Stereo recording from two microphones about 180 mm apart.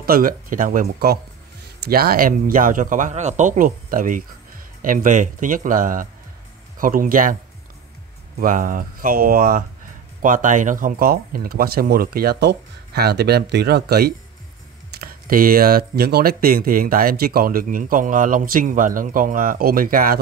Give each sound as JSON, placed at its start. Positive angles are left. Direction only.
{"t": 0.0, "sound": "speech", "side_deg": -55}
{"t": 8.4, "sound": "speech", "side_deg": -50}